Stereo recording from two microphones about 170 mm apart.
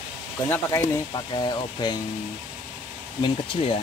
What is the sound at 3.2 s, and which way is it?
Speech, 30° left (ahead or behind).